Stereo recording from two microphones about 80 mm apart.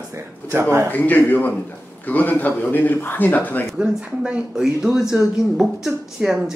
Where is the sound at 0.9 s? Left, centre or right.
Left.